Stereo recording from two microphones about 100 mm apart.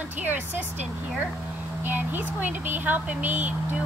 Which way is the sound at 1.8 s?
20° right (ahead or behind).